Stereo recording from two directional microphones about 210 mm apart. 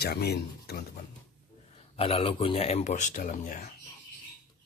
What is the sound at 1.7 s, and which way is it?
Speech, 25° left (ahead or behind).